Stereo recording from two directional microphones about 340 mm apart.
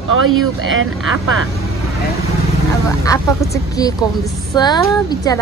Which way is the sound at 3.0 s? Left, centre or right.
Centre.